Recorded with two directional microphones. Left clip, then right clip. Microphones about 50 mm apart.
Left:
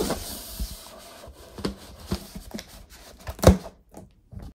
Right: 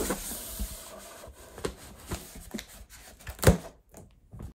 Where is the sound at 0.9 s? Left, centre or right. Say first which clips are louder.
Left 2 dB; left.